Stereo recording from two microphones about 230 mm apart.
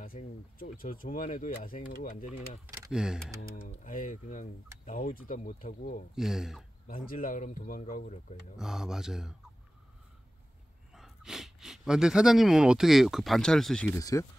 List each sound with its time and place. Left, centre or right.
0.0 s speech: left
2.7 s speech: centre
3.3 s speech: left
6.1 s speech: centre
6.9 s speech: left
8.5 s speech: centre
10.9 s speech: centre
13.9 s speech: centre